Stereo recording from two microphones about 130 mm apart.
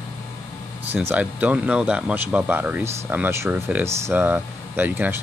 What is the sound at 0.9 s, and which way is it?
Speech, 15° right (ahead or behind).